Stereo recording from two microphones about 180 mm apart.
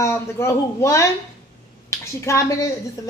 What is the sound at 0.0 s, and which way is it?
A woman's voice, 15° left (ahead or behind).